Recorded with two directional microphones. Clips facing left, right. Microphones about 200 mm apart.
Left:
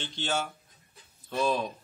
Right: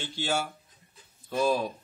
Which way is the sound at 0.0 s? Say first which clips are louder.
Right 1 dB; 10° right (ahead or behind).